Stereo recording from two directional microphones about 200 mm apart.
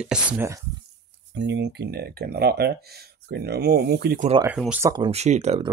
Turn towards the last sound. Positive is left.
turn(degrees=-30)  # may be behind; listen again after turning